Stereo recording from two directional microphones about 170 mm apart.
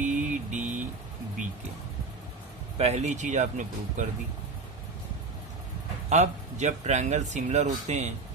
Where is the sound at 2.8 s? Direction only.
40° right (ahead or behind).